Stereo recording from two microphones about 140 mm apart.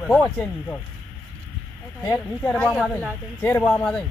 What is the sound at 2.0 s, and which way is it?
Speech, 20° left (ahead or behind).